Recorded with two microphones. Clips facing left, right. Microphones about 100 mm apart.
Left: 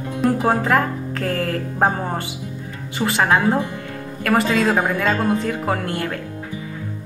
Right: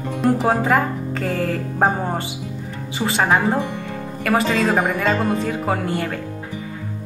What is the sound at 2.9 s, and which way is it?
Speech, 15° right (ahead or behind).